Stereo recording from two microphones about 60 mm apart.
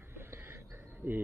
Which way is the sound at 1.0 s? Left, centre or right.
Right.